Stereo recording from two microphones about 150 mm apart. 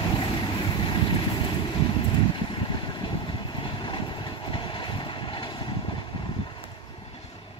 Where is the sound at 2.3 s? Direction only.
35° left (ahead or behind).